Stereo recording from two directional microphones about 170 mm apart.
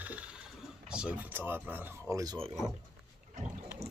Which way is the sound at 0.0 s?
10° right (ahead or behind).